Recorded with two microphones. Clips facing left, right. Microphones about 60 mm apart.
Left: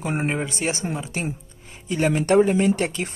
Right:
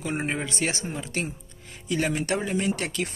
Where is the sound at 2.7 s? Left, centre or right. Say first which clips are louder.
Left 5 dB; left.